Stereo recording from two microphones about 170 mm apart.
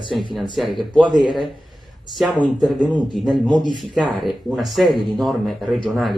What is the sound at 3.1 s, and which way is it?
Speech, centre (ahead or behind).